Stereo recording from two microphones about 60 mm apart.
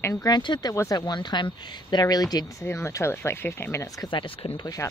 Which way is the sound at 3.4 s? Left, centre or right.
Left.